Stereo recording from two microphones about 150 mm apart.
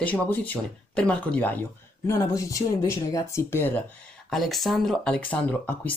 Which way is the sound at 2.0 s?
20° left (ahead or behind).